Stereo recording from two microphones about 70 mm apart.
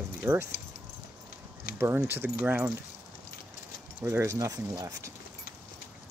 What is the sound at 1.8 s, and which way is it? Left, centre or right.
Speech, right.